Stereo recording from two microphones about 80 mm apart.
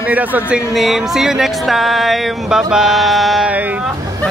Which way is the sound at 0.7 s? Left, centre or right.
Centre.